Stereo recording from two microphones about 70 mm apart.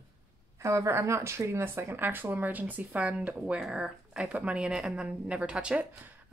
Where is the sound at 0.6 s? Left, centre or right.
Right.